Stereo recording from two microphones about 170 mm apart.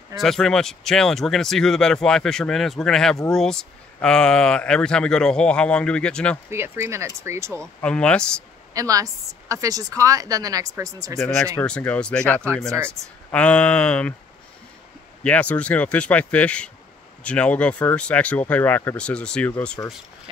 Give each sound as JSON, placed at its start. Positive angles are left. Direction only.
{"t": 0.2, "sound": "speech", "side_deg": 5}
{"t": 6.5, "sound": "speech", "side_deg": -15}
{"t": 7.6, "sound": "speech", "side_deg": 5}
{"t": 8.7, "sound": "a woman's voice", "side_deg": -20}
{"t": 11.6, "sound": "speech", "side_deg": 5}
{"t": 12.7, "sound": "speech", "side_deg": -15}
{"t": 13.3, "sound": "speech", "side_deg": 5}
{"t": 15.2, "sound": "speech", "side_deg": 10}